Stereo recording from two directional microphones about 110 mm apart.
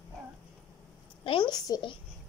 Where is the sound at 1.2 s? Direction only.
50° left (ahead or behind).